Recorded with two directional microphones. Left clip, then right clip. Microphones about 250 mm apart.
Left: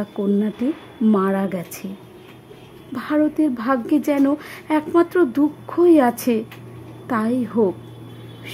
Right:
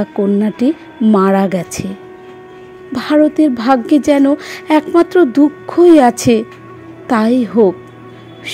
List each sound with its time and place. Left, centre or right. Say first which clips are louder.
0.0 s a woman's voice: right 7 dB; centre
2.9 s a woman's voice: right 9 dB; centre